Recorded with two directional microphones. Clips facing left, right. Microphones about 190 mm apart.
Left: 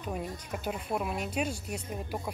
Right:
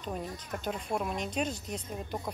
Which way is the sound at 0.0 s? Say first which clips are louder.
Left 1 dB; 10° left (ahead or behind).